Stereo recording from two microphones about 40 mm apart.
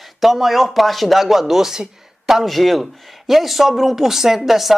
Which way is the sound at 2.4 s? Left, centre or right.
Centre.